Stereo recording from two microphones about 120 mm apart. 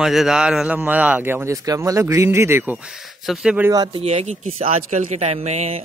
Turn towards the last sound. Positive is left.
turn(degrees=-65)  # may be behind; listen again after turning